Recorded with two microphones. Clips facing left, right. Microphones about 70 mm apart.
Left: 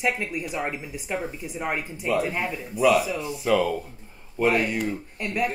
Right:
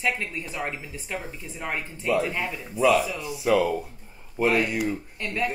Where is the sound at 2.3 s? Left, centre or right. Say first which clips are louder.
Left 2 dB; centre.